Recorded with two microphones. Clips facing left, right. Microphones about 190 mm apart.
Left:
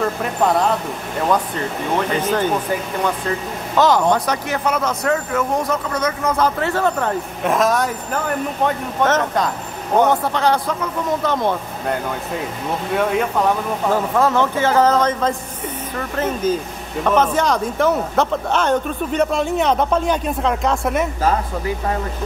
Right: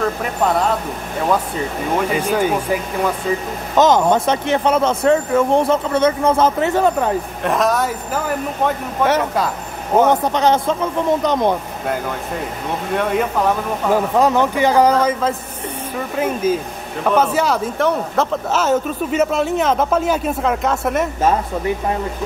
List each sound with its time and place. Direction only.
0.0 s speech: centre (ahead or behind)
2.1 s a man's voice: 10° right (ahead or behind)
3.7 s speech: 20° right (ahead or behind)
7.4 s speech: centre (ahead or behind)
10.0 s speech: 20° right (ahead or behind)
12.9 s speech: centre (ahead or behind)
13.9 s a man's voice: 15° right (ahead or behind)
21.2 s speech: 25° right (ahead or behind)